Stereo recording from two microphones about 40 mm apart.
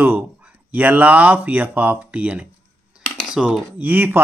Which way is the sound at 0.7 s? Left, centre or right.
Right.